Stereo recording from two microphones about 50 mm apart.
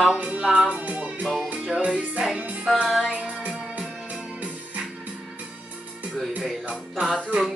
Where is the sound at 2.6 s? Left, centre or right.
Centre.